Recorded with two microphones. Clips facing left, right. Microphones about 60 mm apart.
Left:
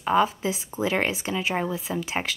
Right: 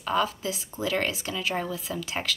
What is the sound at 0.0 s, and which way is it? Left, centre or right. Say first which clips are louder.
Speech: left 5 dB; left.